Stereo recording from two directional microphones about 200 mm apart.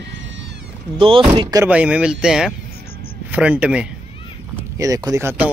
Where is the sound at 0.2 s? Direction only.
65° right (ahead or behind).